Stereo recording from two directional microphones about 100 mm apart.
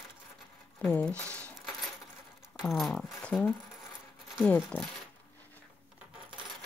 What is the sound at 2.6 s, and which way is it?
Speech, centre (ahead or behind).